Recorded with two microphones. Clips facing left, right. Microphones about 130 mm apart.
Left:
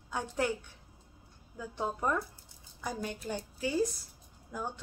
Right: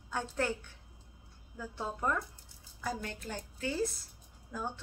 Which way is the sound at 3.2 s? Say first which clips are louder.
Left 2 dB; 15° left (ahead or behind).